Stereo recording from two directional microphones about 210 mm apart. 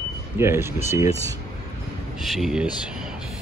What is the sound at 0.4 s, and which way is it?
Speech, 10° right (ahead or behind).